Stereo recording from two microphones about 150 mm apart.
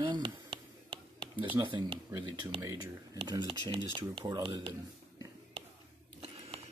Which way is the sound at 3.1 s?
30° right (ahead or behind).